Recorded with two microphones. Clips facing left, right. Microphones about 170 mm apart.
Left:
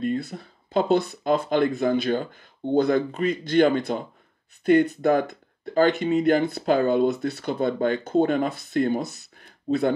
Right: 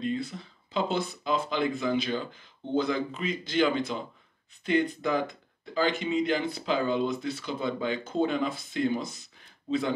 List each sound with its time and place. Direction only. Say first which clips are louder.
0.0 s speech: left 4 dB; 50° left (ahead or behind)